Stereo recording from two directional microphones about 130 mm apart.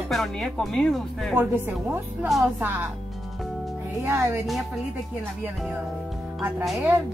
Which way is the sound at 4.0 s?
15° right (ahead or behind).